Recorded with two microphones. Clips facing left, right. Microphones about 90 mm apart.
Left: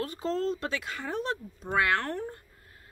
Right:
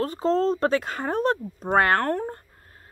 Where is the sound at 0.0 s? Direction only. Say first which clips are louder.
Right 8 dB; 35° right (ahead or behind).